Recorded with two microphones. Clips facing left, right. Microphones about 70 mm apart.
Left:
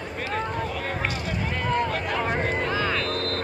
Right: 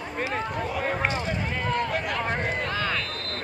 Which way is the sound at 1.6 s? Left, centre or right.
Centre.